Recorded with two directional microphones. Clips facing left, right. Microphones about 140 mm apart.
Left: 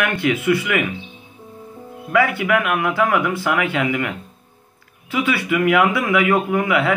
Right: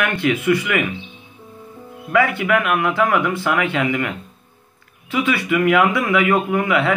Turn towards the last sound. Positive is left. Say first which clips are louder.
# even
turn(degrees=15)  # may be behind; listen again after turning